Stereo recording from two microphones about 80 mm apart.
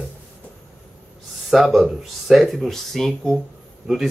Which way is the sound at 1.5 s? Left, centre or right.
Centre.